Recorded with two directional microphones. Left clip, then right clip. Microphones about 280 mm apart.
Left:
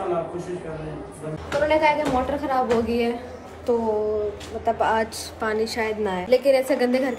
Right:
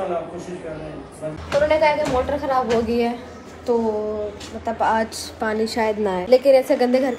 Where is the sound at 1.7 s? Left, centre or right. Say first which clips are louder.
Even; centre.